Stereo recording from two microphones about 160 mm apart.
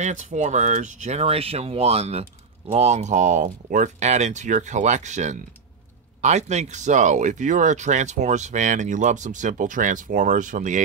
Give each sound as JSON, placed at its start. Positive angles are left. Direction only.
{"t": 0.0, "sound": "speech", "side_deg": -45}